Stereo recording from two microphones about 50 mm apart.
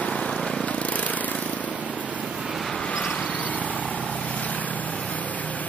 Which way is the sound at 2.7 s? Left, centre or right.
Left.